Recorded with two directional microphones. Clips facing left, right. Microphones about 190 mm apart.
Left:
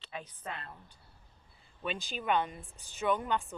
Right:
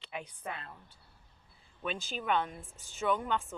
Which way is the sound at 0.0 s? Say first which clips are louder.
Right 2 dB; 15° right (ahead or behind).